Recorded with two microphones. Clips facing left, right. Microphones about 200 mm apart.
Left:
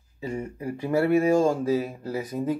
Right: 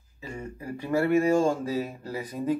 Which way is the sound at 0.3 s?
20° left (ahead or behind).